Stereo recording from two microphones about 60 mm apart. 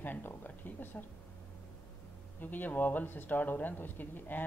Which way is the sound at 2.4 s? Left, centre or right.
Left.